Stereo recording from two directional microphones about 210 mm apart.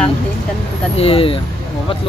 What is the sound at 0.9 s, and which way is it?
Speech, 25° left (ahead or behind).